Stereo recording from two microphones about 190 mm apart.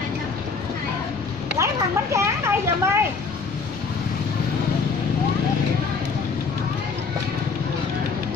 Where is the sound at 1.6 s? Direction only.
15° right (ahead or behind).